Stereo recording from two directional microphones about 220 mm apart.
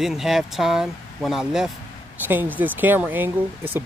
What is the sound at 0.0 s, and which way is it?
Speech, centre (ahead or behind).